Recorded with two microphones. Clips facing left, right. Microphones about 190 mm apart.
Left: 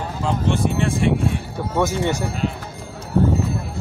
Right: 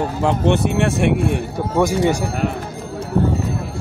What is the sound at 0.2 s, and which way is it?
Speech, 65° right (ahead or behind).